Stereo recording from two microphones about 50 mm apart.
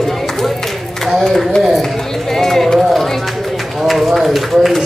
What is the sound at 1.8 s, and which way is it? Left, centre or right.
Run, centre.